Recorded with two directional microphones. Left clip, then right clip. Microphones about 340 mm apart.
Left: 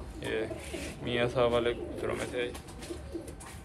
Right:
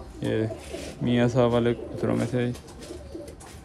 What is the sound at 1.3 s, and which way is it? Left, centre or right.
Speech, right.